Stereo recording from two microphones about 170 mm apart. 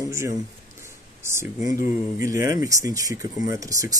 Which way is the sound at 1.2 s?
15° right (ahead or behind).